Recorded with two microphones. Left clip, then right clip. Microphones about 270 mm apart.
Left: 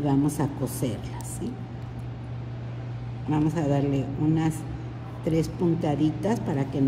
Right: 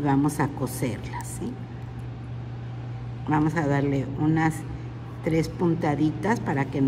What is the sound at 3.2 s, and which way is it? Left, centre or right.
A man's voice, centre.